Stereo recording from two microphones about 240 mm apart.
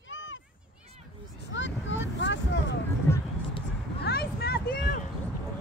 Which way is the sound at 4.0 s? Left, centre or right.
Left.